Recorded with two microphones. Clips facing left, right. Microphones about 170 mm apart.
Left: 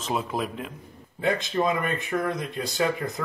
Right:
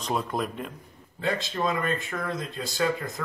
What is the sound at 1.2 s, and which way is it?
Speech, 20° left (ahead or behind).